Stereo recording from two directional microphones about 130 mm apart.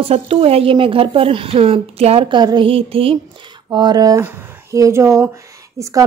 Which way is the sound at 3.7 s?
30° right (ahead or behind).